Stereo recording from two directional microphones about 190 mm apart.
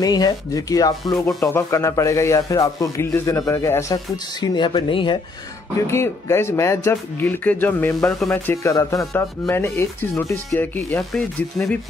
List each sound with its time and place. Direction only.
0.0 s speech: 20° left (ahead or behind)
5.9 s speech: 15° left (ahead or behind)